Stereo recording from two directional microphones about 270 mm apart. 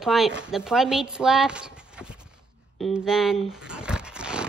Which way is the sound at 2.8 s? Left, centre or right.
Centre.